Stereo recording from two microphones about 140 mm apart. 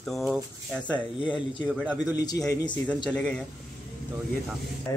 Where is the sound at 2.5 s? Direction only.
25° left (ahead or behind).